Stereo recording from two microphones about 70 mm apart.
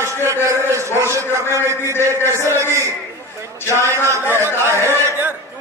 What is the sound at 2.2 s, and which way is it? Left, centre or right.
Speech, right.